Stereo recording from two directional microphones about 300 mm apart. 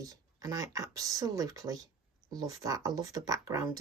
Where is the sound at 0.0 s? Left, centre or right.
Centre.